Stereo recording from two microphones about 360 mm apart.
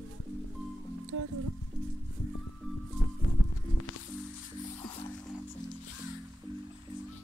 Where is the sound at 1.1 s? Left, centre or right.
Right.